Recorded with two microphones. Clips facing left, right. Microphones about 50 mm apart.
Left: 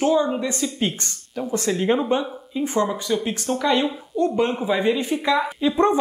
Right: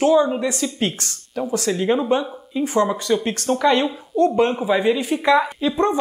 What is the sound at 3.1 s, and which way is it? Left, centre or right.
Speech, right.